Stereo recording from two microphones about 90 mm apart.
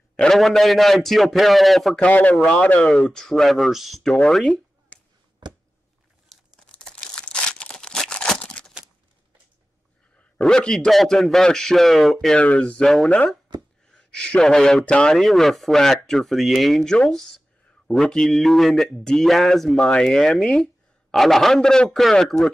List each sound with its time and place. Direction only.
0.1 s a man's voice: 5° left (ahead or behind)
2.0 s a man's voice: 15° left (ahead or behind)
6.3 s crumpling: centre (ahead or behind)
10.3 s a man's voice: 10° left (ahead or behind)
12.4 s speech: 15° left (ahead or behind)
13.5 s a sound: 55° right (ahead or behind)
13.9 s a man's voice: 10° left (ahead or behind)